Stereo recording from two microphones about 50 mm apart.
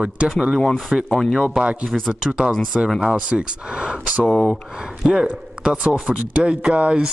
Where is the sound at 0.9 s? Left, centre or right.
Centre.